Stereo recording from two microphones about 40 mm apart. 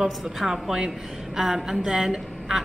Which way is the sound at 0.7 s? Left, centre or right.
Centre.